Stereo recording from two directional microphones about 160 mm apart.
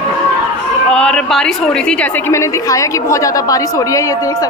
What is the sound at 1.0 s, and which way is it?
A woman's voice, 5° left (ahead or behind).